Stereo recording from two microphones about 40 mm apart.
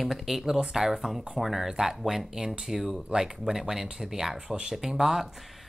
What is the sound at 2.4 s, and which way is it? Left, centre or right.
Speech, centre.